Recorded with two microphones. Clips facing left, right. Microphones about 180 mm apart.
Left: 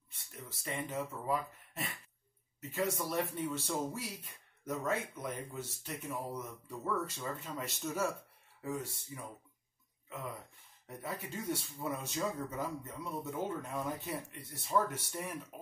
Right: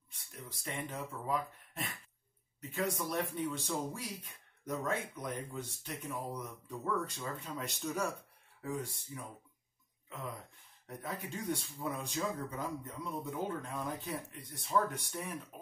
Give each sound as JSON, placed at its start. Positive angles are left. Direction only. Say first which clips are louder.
{"t": 0.1, "sound": "speech", "louder": "even", "side_deg": 0}
{"t": 10.9, "sound": "speech", "louder": "even", "side_deg": 0}